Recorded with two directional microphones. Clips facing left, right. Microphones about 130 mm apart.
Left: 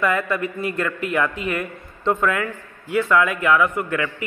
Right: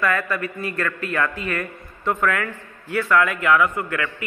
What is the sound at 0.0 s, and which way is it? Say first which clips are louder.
A man's voice: left 2 dB; 20° left (ahead or behind).